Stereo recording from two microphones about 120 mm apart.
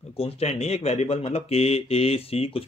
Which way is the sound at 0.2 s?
60° left (ahead or behind).